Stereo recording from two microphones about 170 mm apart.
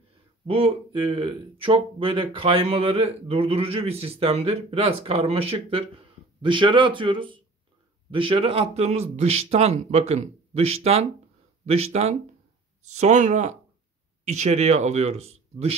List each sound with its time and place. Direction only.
0.5 s speech: 35° right (ahead or behind)